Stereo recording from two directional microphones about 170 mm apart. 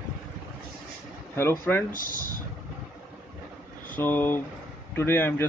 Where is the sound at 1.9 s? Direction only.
55° left (ahead or behind).